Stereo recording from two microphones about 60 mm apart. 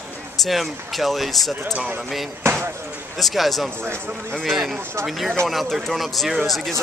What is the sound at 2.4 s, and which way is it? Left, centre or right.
Speech, right.